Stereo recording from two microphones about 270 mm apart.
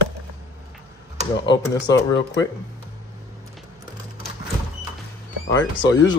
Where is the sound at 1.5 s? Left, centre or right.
Centre.